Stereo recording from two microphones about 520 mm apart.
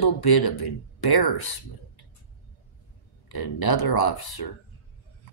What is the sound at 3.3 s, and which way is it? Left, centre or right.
Speech, left.